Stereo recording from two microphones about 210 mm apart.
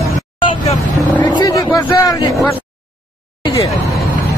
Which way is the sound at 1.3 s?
20° left (ahead or behind).